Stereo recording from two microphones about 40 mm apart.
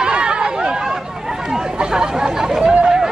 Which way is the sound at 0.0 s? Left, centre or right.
Right.